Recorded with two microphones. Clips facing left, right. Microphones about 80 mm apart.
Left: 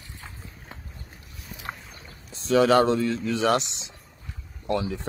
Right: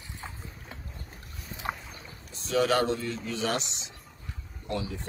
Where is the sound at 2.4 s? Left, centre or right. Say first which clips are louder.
Left 6 dB; left.